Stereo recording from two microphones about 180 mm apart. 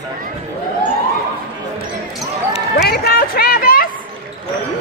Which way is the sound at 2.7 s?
60° left (ahead or behind).